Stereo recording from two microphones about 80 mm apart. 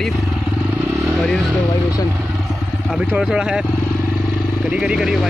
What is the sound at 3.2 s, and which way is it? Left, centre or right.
Speech, centre.